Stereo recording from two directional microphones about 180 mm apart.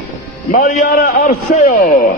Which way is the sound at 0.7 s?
50° left (ahead or behind).